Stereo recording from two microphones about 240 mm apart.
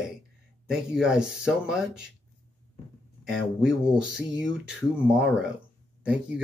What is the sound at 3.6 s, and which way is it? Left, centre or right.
Speech, centre.